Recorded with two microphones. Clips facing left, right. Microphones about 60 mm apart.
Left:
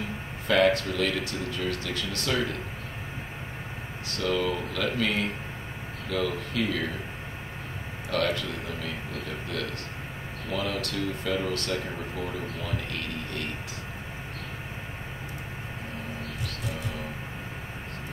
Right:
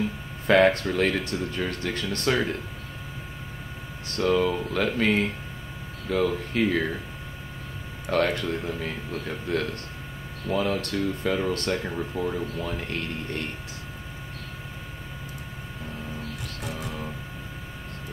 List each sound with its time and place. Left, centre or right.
0.5 s speech: right
4.1 s speech: right
8.1 s speech: right